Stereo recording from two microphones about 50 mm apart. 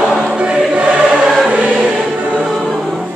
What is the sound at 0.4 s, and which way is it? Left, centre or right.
Choir, right.